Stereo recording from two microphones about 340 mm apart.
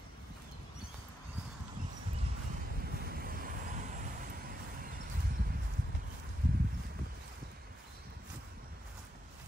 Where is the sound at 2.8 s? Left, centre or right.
Right.